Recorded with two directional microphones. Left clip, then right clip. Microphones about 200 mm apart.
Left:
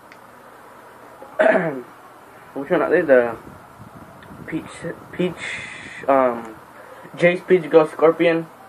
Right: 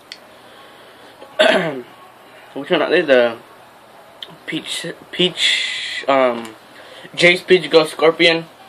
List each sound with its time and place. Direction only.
1.4 s cough: 30° right (ahead or behind)
2.6 s a man's voice: 35° right (ahead or behind)
4.5 s speech: 30° right (ahead or behind)